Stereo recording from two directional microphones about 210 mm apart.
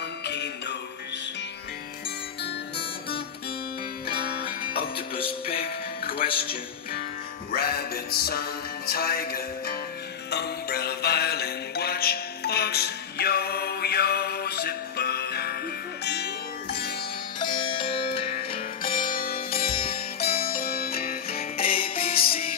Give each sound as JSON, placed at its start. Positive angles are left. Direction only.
{"t": 0.2, "sound": "music", "side_deg": 55}
{"t": 4.4, "sound": "music", "side_deg": 25}
{"t": 7.5, "sound": "music", "side_deg": 50}
{"t": 17.4, "sound": "music", "side_deg": 20}
{"t": 18.8, "sound": "music", "side_deg": 40}
{"t": 21.6, "sound": "music", "side_deg": 25}